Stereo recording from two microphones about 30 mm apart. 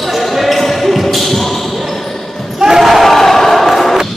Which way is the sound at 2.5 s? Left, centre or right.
Centre.